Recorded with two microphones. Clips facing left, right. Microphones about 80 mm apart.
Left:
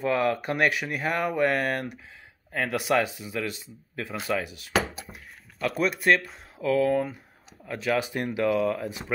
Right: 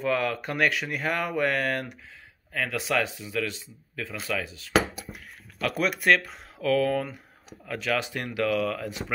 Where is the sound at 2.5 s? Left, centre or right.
Left.